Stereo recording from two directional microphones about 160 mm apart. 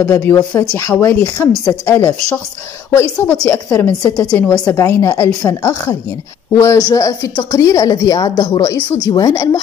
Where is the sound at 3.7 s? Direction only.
20° left (ahead or behind).